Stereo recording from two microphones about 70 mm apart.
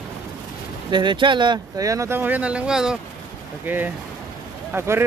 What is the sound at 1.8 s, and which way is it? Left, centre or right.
Speech, right.